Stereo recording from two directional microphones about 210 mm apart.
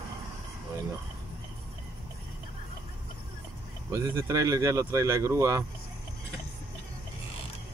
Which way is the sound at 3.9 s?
15° right (ahead or behind).